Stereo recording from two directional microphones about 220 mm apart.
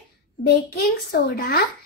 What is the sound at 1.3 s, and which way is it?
Speech, 45° left (ahead or behind).